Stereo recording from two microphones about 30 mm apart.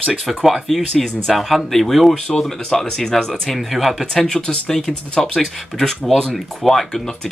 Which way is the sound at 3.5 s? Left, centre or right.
Centre.